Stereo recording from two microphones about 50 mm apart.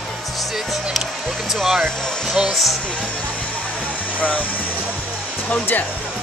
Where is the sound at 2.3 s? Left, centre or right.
Centre.